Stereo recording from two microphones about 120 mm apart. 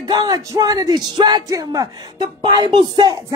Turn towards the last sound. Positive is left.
turn(degrees=-35)  # may be behind; listen again after turning